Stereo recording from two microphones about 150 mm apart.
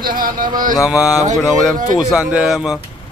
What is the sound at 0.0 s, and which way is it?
Speech, 70° right (ahead or behind).